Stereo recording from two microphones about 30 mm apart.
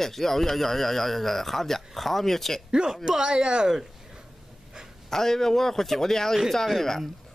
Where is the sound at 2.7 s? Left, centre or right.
Right.